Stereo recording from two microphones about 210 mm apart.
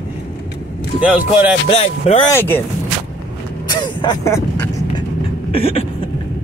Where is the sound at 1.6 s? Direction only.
30° left (ahead or behind).